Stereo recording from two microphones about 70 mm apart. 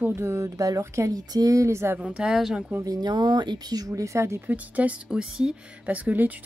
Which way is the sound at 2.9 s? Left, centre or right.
Right.